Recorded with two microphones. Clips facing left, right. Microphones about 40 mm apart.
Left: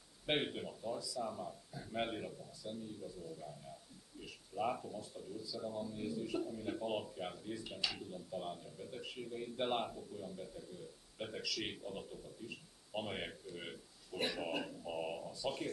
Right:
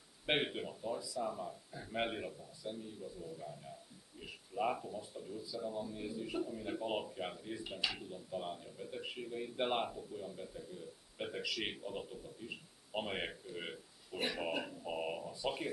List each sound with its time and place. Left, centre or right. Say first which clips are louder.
0.3 s speech: right 2 dB; centre
14.1 s speech: right 1 dB; centre